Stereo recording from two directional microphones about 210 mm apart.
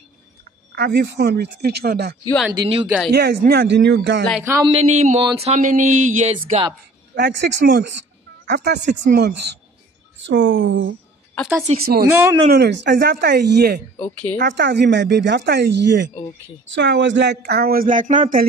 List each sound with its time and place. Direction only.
0.7 s speech: 55° right (ahead or behind)
2.6 s a sound: 25° right (ahead or behind)
3.1 s speech: 50° right (ahead or behind)
4.3 s speech: 10° right (ahead or behind)
4.6 s a sound: 30° right (ahead or behind)
6.3 s a sound: 25° right (ahead or behind)
7.2 s speech: 55° right (ahead or behind)
11.6 s a sound: 30° right (ahead or behind)
12.1 s speech: 15° right (ahead or behind)
12.5 s speech: 55° right (ahead or behind)
13.9 s a woman's voice: 5° left (ahead or behind)
14.4 s speech: 55° right (ahead or behind); by 18.5 s 40° right (ahead or behind)